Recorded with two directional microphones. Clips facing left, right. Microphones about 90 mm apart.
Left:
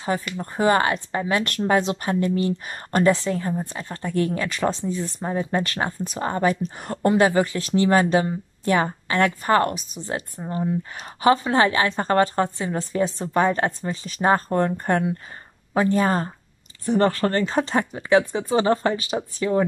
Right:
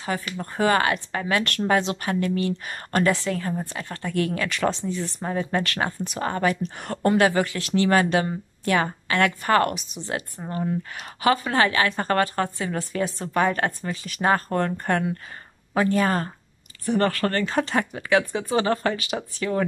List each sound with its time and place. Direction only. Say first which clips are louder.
0.0 s a woman's voice: left 3 dB; 25° left (ahead or behind)
11.1 s a woman's voice: left 3 dB; 25° left (ahead or behind)